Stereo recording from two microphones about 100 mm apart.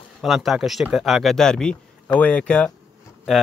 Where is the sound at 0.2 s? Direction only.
Centre (ahead or behind).